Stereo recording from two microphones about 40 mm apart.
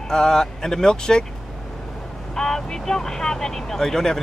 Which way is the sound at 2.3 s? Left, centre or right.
Centre.